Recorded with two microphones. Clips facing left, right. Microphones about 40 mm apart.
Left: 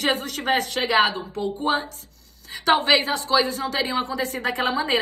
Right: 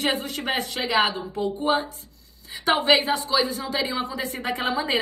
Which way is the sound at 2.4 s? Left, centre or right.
Left.